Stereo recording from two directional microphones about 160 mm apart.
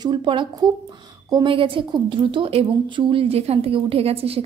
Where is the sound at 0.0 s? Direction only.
30° right (ahead or behind).